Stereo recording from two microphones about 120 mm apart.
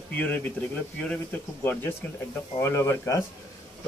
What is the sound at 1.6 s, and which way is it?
A man's voice, 15° left (ahead or behind).